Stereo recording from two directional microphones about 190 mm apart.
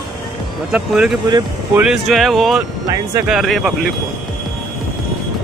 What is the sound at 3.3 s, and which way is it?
Speech, centre (ahead or behind).